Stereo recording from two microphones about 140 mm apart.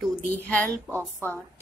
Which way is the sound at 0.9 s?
20° right (ahead or behind).